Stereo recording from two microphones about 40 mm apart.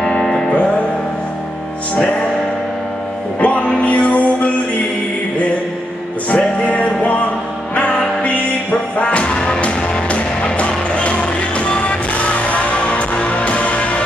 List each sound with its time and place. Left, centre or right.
0.0 s music: left
3.3 s music: left
6.3 s music: left